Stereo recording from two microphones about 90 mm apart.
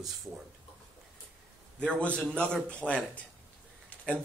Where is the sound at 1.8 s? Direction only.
10° left (ahead or behind).